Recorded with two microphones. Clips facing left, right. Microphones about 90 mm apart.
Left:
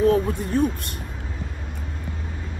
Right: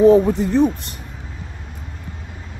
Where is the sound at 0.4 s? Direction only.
90° right.